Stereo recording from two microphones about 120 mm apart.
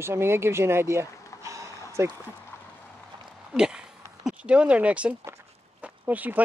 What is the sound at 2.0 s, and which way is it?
Speech, 25° right (ahead or behind).